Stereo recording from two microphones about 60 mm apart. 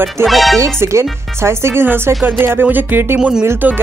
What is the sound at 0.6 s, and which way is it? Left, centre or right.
Speech, right.